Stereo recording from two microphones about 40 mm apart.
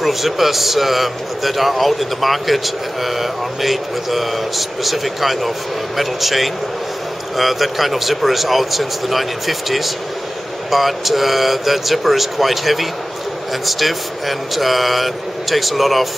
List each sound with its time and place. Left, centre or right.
0.0 s a man's voice: centre